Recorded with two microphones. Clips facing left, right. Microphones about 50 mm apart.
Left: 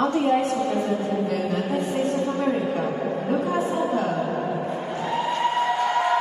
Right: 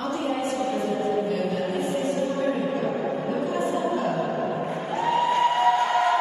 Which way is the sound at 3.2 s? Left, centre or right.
Left.